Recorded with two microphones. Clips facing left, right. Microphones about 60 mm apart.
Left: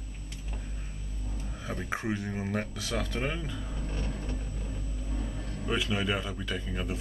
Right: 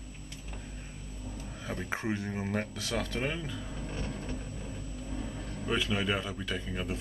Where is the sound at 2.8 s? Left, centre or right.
Centre.